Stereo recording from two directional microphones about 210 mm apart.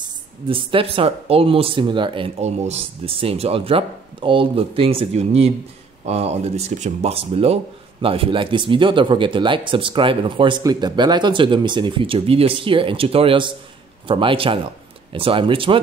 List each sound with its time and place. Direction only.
0.5 s speech: 25° right (ahead or behind)